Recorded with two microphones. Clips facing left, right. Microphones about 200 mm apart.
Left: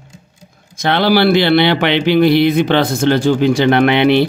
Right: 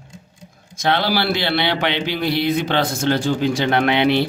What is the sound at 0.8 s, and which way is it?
A man's voice, 70° left (ahead or behind).